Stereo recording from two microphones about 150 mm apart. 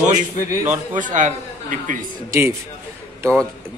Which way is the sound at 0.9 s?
60° right (ahead or behind).